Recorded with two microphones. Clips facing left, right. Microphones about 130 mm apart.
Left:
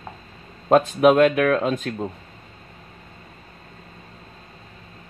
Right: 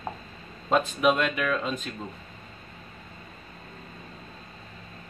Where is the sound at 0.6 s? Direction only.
55° left (ahead or behind).